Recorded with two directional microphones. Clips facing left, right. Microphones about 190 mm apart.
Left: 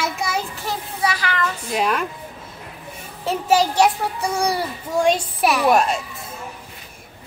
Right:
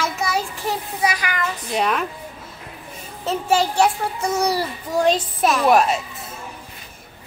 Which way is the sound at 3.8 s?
10° left (ahead or behind).